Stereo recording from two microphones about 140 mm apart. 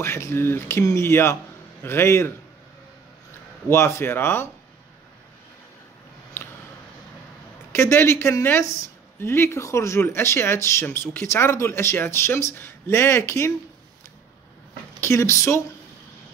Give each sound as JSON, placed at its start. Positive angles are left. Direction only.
{"t": 0.0, "sound": "speech", "side_deg": 20}
{"t": 3.6, "sound": "speech", "side_deg": 20}
{"t": 7.7, "sound": "speech", "side_deg": 20}
{"t": 15.0, "sound": "speech", "side_deg": 20}